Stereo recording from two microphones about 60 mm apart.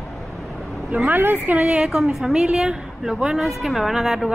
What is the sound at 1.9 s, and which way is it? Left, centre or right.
A woman's voice, centre.